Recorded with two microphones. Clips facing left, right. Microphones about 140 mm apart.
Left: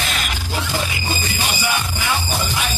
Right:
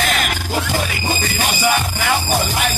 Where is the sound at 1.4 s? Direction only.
50° right (ahead or behind).